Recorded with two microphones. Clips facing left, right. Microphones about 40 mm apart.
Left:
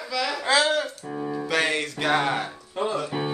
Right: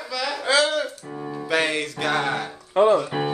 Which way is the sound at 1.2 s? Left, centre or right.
Centre.